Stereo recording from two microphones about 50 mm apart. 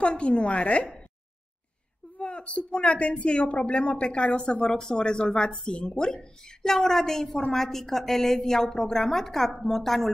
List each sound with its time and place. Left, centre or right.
0.0 s speech: left
2.1 s a woman's voice: left; by 10.1 s centre